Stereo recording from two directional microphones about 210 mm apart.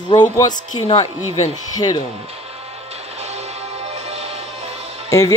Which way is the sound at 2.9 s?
30° right (ahead or behind).